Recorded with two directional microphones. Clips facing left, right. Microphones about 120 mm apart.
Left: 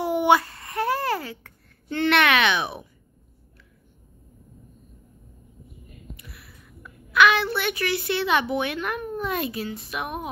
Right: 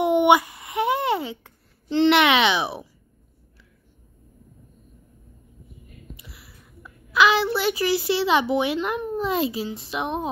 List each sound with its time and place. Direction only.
0.0 s babbling: 20° right (ahead or behind)
6.8 s a child's voice: 25° right (ahead or behind)